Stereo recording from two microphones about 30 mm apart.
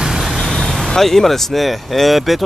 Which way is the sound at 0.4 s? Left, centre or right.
Centre.